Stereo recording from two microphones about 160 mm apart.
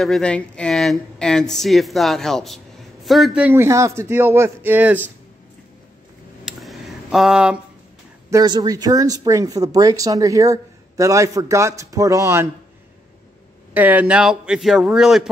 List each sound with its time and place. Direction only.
0.0 s speech: 5° left (ahead or behind)
3.4 s speech: 15° right (ahead or behind)
6.4 s a sound: centre (ahead or behind)
8.3 s speech: 25° right (ahead or behind)
13.7 s speech: 10° right (ahead or behind)